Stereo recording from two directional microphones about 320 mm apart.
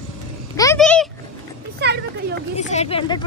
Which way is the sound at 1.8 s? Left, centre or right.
Right.